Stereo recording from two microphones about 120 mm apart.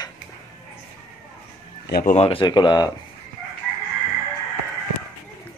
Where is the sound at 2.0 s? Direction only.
60° left (ahead or behind).